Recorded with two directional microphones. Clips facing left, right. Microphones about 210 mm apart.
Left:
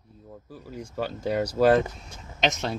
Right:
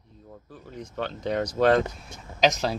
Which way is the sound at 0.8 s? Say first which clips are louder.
Left 1 dB; 5° left (ahead or behind).